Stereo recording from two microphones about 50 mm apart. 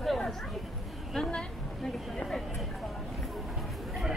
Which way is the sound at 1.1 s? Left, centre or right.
Centre.